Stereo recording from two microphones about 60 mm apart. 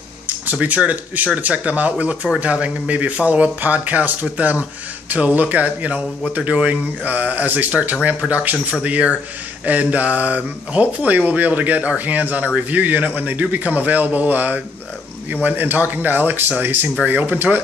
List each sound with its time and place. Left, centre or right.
0.5 s speech: right